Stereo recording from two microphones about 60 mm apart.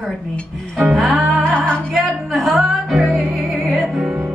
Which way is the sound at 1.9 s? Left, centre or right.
Centre.